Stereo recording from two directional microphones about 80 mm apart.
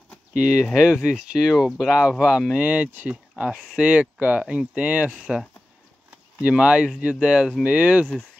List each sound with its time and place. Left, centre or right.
0.3 s speech: centre
5.2 s speech: centre
6.0 s a sound: centre
7.0 s speech: centre